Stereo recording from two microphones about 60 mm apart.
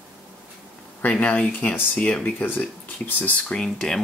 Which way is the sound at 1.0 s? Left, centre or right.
Left.